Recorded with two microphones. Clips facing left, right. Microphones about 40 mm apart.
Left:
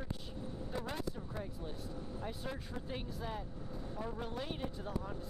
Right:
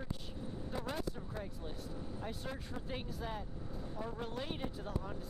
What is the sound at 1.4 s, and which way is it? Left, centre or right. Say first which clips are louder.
Speech: left 1 dB; centre.